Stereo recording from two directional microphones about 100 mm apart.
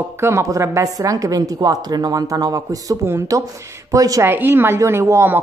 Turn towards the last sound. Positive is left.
turn(degrees=-25)  # may be behind; listen again after turning